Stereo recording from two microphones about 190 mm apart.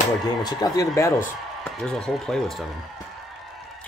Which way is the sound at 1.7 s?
5° left (ahead or behind).